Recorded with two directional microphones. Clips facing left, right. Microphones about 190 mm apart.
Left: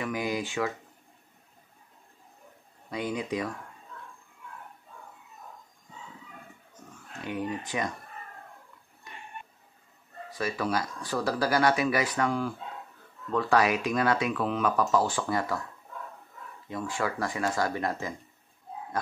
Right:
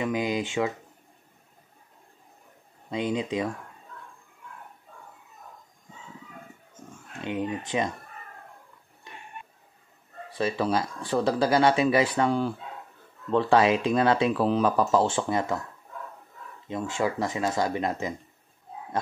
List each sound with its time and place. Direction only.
0.0 s speech: 20° right (ahead or behind)
2.9 s speech: 25° right (ahead or behind)
7.2 s speech: 20° right (ahead or behind)
10.3 s speech: 25° right (ahead or behind)
16.6 s speech: 20° right (ahead or behind)